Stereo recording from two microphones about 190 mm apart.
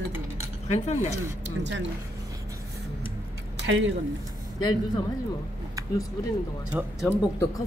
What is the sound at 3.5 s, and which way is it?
Speech, 75° right (ahead or behind).